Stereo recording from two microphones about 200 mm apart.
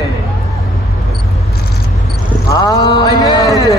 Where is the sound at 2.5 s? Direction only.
15° left (ahead or behind).